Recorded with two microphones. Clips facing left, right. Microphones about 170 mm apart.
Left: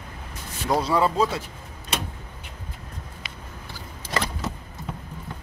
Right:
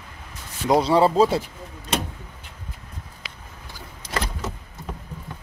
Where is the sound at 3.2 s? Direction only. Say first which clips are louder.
Left 1 dB; 90° right.